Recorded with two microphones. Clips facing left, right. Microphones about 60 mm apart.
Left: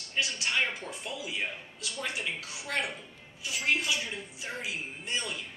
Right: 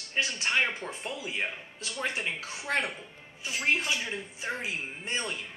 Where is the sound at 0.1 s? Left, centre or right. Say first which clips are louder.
Right 2 dB; right.